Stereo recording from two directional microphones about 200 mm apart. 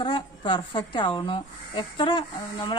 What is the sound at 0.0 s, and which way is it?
Speech, 25° left (ahead or behind).